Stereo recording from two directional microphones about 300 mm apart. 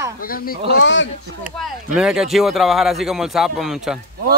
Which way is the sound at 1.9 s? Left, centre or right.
Centre.